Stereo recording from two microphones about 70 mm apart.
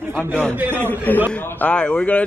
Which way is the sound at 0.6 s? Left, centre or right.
Right.